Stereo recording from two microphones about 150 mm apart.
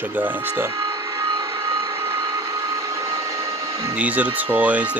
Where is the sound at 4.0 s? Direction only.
10° right (ahead or behind).